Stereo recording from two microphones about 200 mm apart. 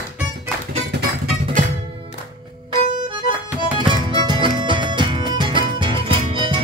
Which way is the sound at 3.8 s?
25° right (ahead or behind).